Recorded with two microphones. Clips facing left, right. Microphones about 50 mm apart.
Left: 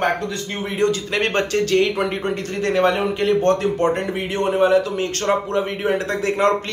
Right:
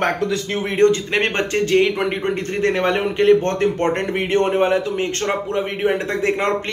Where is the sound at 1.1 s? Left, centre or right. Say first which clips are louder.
Even; right.